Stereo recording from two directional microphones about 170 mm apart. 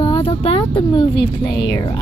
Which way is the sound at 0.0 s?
30° left (ahead or behind).